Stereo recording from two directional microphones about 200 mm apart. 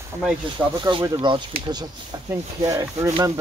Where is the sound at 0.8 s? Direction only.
25° right (ahead or behind).